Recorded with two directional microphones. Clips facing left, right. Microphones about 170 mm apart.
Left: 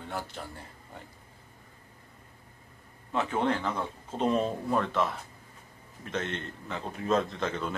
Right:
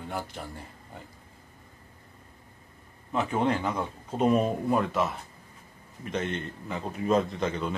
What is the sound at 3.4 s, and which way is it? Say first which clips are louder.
A man's voice: right 2 dB; 10° right (ahead or behind).